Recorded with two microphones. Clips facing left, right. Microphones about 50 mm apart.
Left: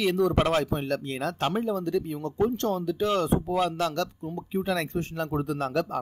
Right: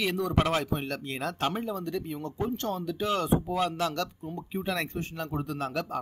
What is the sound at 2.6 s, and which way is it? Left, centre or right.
Speech, centre.